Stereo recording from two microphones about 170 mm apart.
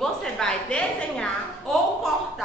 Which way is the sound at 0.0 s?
5° left (ahead or behind).